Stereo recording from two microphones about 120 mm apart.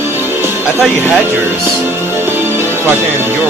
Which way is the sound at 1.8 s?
15° right (ahead or behind).